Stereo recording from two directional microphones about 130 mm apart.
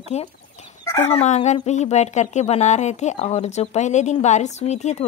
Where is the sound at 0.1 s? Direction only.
60° left (ahead or behind).